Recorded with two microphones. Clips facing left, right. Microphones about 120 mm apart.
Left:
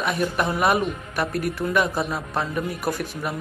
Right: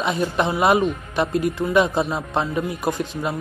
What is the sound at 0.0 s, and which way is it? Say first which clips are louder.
Speech: right 2 dB; 25° right (ahead or behind).